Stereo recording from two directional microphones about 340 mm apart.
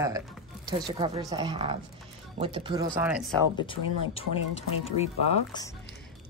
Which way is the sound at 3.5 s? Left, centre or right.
Centre.